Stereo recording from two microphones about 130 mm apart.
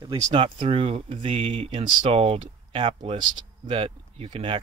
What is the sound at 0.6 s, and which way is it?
Speech, 50° right (ahead or behind).